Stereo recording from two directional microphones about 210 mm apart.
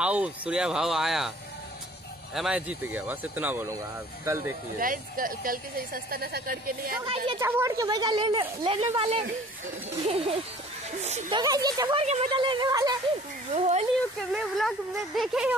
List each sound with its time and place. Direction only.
0.0 s speech: 5° right (ahead or behind)
2.3 s speech: 5° right (ahead or behind)
4.7 s speech: 40° right (ahead or behind)
7.3 s speech: 10° right (ahead or behind)
12.0 s speech: 30° right (ahead or behind)
13.5 s speech: 30° right (ahead or behind)
14.3 s speech: centre (ahead or behind)